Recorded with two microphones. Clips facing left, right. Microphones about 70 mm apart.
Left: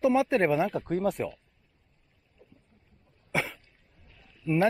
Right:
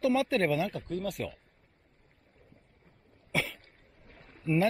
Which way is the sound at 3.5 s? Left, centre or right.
Right.